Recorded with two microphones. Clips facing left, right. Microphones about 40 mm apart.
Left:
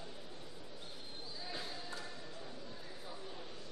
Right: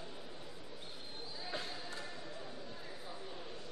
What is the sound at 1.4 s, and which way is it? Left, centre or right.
Basketball bounce, centre.